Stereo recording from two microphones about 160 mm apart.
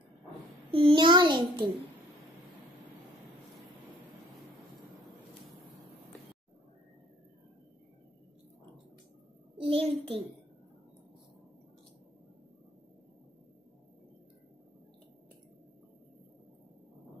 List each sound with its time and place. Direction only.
0.7 s a child's voice: 35° right (ahead or behind)
9.6 s a child's voice: 35° right (ahead or behind)